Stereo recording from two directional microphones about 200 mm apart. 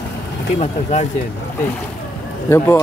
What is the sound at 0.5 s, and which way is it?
Speech, 35° left (ahead or behind).